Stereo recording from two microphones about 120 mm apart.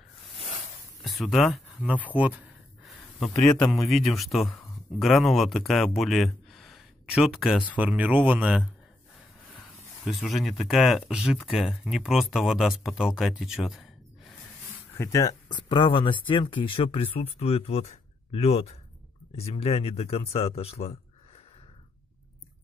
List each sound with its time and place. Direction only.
0.4 s a sound: 55° right (ahead or behind)
1.0 s speech: centre (ahead or behind)
1.8 s speech: 10° right (ahead or behind)
2.8 s a man's voice: 5° left (ahead or behind); by 8.6 s 10° right (ahead or behind)
9.6 s speech: centre (ahead or behind)
15.0 s speech: 30° left (ahead or behind); by 21.0 s 60° left (ahead or behind)